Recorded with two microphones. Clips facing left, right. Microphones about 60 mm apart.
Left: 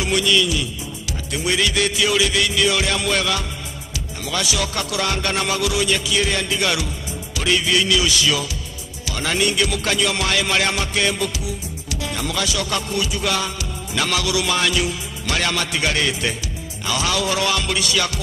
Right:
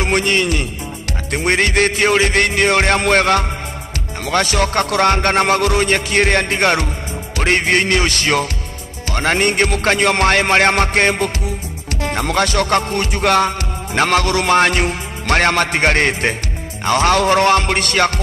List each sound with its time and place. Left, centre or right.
0.0 s a man's voice: right
1.3 s music: right